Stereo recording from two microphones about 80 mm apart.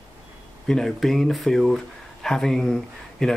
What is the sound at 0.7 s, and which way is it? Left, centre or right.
Speech, centre.